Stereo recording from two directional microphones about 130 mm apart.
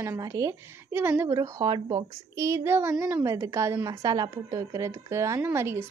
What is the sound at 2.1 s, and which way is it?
A woman's voice, 20° right (ahead or behind).